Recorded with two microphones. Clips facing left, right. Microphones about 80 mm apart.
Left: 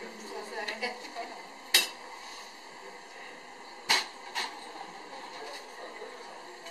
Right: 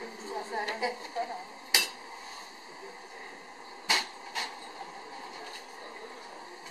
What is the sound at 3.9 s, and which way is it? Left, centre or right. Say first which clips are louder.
Scratch: even; centre.